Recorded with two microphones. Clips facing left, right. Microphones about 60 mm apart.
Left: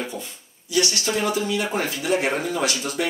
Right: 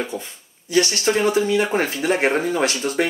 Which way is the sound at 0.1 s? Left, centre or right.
Right.